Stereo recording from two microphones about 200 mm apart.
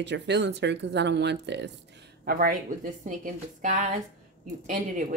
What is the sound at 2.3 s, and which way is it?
A woman's voice, 45° right (ahead or behind).